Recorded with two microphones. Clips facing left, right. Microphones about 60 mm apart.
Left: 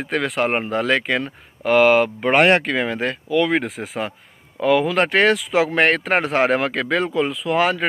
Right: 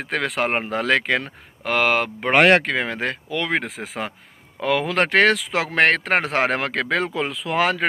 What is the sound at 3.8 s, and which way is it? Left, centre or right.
Speech, centre.